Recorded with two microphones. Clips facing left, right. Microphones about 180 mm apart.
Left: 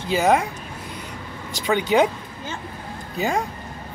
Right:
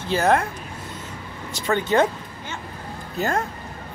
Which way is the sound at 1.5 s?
Centre (ahead or behind).